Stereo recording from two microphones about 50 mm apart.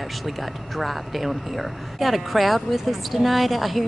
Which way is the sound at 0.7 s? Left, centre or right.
Centre.